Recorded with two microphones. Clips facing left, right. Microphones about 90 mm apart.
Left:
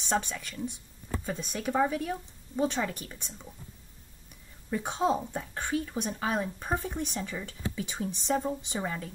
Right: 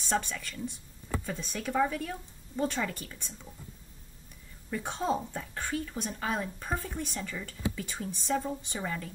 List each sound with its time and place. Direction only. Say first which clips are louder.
0.1 s speech: left 1 dB; 15° left (ahead or behind)
4.6 s speech: left 3 dB; 15° left (ahead or behind)